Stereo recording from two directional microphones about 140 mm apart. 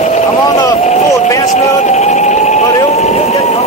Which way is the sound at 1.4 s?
55° left (ahead or behind).